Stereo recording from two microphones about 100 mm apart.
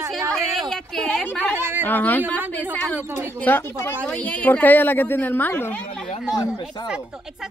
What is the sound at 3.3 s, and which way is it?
A woman's voice, 20° left (ahead or behind).